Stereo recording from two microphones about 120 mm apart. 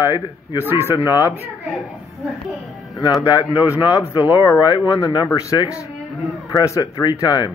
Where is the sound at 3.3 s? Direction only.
35° left (ahead or behind).